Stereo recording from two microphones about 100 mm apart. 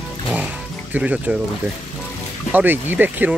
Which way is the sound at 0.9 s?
15° right (ahead or behind).